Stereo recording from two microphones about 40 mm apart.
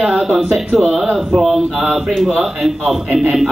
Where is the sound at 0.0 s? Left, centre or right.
Centre.